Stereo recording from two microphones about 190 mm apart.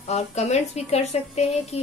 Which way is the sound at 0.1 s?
35° left (ahead or behind).